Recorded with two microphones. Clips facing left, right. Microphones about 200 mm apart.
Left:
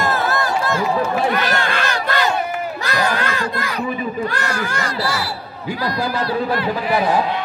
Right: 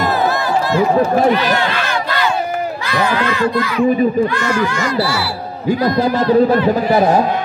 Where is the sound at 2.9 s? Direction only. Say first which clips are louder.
Right 3 dB; 45° left (ahead or behind).